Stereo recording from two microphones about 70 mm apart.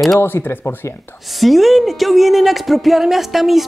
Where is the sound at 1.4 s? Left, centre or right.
Centre.